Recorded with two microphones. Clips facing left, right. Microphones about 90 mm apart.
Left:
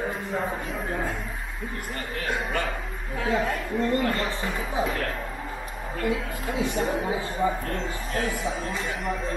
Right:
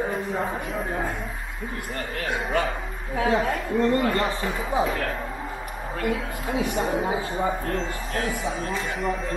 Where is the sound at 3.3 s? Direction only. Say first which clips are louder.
Right 1 dB; centre (ahead or behind).